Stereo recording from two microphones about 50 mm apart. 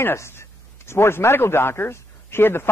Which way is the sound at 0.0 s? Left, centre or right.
Left.